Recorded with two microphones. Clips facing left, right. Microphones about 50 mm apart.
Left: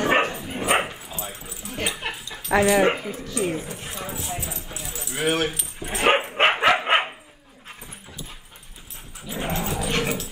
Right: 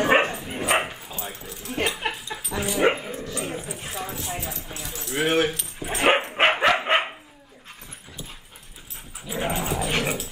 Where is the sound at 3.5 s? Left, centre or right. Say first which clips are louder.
Even; centre.